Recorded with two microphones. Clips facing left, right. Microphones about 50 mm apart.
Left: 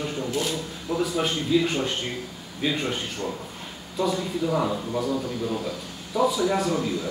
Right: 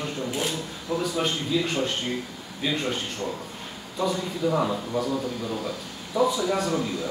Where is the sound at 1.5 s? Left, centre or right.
Centre.